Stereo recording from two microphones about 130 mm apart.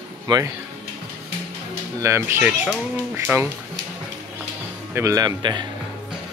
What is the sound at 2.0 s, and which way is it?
Speech, 20° right (ahead or behind).